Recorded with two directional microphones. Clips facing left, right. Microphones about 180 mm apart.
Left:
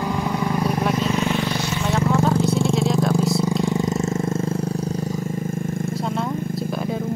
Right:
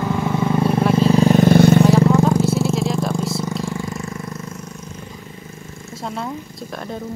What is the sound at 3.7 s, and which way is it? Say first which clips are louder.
Vehicle: left 6 dB; 20° left (ahead or behind).